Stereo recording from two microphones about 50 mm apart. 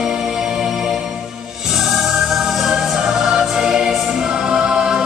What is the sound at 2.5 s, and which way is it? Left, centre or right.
Music, centre.